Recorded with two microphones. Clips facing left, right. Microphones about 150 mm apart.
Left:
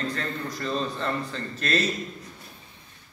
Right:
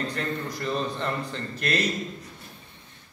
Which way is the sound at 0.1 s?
15° right (ahead or behind).